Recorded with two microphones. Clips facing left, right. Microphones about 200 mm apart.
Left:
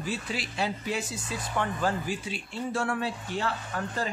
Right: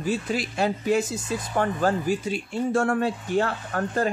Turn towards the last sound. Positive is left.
turn(degrees=-50)  # may be behind; listen again after turning